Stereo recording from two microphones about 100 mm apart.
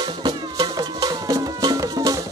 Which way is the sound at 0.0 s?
50° right (ahead or behind).